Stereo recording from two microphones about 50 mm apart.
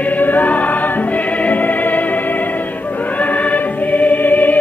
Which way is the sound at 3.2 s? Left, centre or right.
Left.